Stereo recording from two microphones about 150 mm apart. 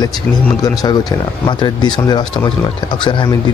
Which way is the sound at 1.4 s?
30° left (ahead or behind).